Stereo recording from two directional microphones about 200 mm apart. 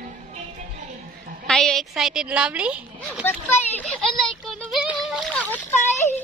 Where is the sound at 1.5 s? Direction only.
Centre (ahead or behind).